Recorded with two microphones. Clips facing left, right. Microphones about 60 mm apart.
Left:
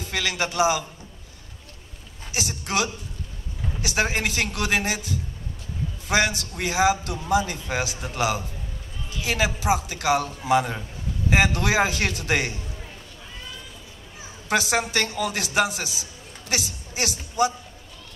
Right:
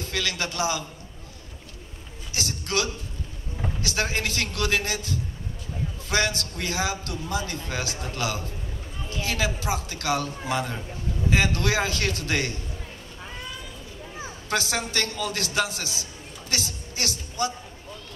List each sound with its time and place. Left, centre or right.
0.0 s a man's voice: centre
2.3 s a man's voice: centre
14.5 s a man's voice: left